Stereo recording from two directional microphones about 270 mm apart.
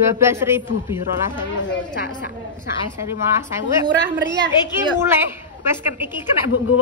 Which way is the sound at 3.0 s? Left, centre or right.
Centre.